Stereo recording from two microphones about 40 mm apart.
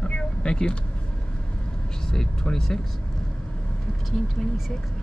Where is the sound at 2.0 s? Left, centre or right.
Centre.